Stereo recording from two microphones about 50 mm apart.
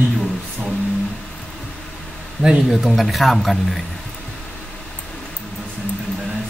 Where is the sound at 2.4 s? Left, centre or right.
Left.